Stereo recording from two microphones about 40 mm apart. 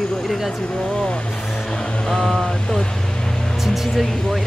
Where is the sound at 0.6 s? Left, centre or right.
Left.